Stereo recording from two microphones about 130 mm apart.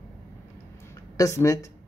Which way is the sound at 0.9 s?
25° left (ahead or behind).